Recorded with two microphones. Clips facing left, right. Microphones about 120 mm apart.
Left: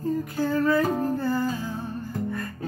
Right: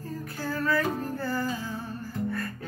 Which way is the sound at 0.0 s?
20° left (ahead or behind).